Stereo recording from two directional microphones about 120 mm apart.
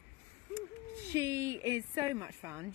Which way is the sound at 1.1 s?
25° right (ahead or behind).